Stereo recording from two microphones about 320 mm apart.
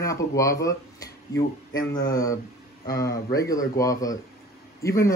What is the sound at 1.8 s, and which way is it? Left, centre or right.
Speech, centre.